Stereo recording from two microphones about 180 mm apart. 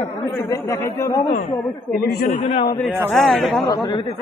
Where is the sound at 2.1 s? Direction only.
50° left (ahead or behind).